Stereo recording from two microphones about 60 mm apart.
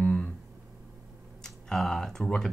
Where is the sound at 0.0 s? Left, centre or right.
Centre.